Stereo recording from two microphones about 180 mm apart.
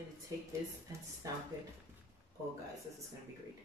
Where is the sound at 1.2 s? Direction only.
20° right (ahead or behind).